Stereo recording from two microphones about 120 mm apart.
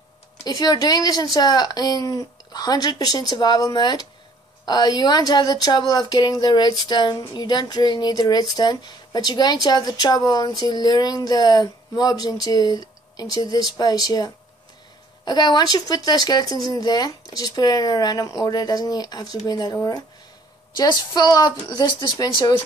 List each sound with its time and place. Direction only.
0.4 s speech: 30° left (ahead or behind)